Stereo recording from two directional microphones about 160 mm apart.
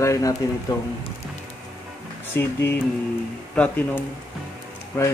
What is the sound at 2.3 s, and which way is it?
Speech, 15° left (ahead or behind).